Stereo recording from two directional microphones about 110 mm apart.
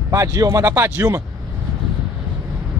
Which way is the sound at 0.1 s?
30° right (ahead or behind).